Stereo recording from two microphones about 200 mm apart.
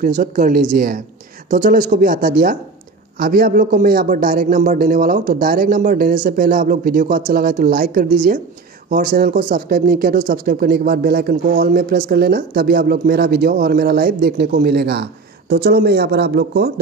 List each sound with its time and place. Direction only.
0.2 s a man's voice: 40° right (ahead or behind)